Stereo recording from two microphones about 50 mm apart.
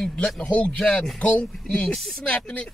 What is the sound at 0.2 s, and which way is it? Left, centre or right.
Speech, left.